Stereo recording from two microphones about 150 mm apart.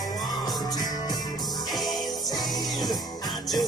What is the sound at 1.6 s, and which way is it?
Music, centre (ahead or behind).